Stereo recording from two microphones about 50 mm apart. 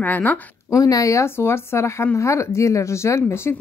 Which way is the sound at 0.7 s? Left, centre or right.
Left.